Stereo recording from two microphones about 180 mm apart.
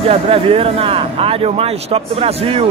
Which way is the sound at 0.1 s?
30° right (ahead or behind).